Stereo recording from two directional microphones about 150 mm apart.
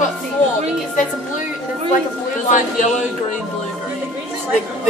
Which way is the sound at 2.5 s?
60° left (ahead or behind).